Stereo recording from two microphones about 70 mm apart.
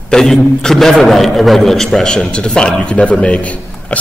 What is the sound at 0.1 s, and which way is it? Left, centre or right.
A man's voice, centre.